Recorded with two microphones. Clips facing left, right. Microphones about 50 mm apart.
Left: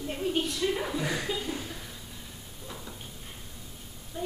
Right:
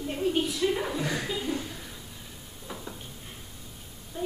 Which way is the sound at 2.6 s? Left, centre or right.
Centre.